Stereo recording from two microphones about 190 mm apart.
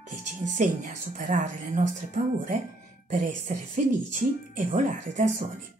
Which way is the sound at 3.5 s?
45° right (ahead or behind).